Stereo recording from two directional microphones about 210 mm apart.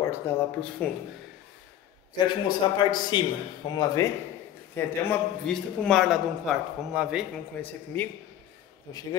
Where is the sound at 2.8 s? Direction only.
20° left (ahead or behind).